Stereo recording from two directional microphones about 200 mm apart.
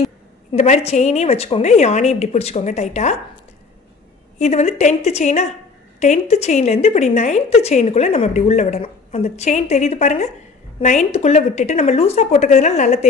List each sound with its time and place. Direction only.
0.5 s a woman's voice: 30° left (ahead or behind)
4.4 s a woman's voice: 35° left (ahead or behind)